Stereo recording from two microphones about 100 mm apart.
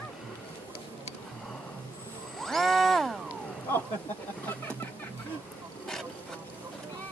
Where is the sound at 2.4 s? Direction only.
5° left (ahead or behind).